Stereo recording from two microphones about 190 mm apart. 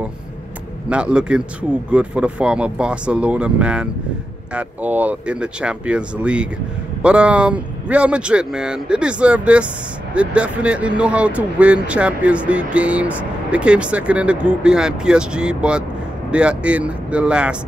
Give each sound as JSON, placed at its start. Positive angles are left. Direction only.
{"t": 0.8, "sound": "speech", "side_deg": -5}